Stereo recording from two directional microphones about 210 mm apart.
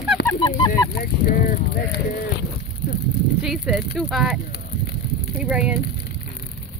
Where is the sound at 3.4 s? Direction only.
Centre (ahead or behind).